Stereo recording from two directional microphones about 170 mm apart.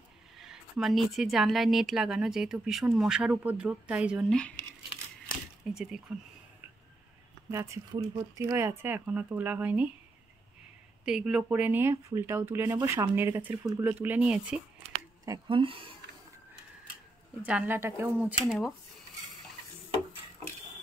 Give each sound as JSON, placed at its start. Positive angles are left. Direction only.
{"t": 0.4, "sound": "speech", "side_deg": 0}
{"t": 5.7, "sound": "speech", "side_deg": -5}
{"t": 7.5, "sound": "speech", "side_deg": -15}
{"t": 11.1, "sound": "speech", "side_deg": -5}
{"t": 15.2, "sound": "speech", "side_deg": -25}
{"t": 17.4, "sound": "speech", "side_deg": -10}
{"t": 18.4, "sound": "speech", "side_deg": 0}